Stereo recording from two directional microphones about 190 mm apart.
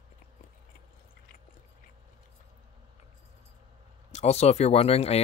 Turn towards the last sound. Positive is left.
turn(degrees=35)  # may be behind; listen again after turning